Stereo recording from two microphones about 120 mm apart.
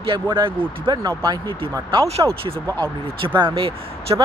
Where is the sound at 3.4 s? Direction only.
50° right (ahead or behind).